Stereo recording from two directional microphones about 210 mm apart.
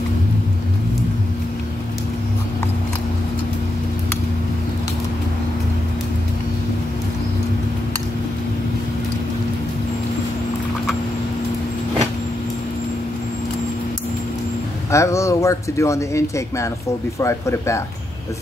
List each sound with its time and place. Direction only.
14.9 s speech: 15° left (ahead or behind)